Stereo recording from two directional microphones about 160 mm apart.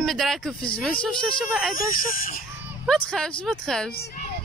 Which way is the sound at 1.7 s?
60° left (ahead or behind).